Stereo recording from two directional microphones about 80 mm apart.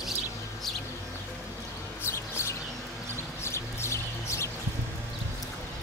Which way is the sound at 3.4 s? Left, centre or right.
Left.